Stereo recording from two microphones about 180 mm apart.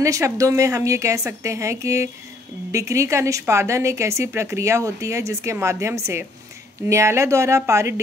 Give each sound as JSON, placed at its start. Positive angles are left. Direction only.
{"t": 0.0, "sound": "speech", "side_deg": -20}